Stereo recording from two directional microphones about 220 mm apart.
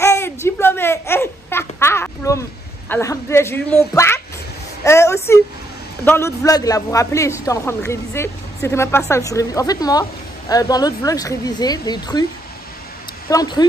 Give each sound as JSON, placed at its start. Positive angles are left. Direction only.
{"t": 0.0, "sound": "a sound", "side_deg": 10}
{"t": 6.0, "sound": "a woman's voice", "side_deg": 10}
{"t": 13.3, "sound": "a woman's voice", "side_deg": 20}